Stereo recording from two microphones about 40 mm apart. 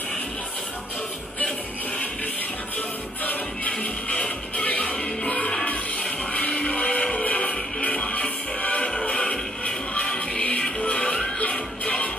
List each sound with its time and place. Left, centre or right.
3.8 s music: left
4.6 s music: left
5.2 s music: left